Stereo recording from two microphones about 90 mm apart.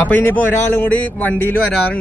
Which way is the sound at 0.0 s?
20° left (ahead or behind).